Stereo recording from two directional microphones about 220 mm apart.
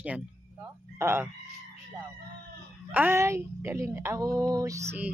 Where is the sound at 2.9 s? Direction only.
10° right (ahead or behind).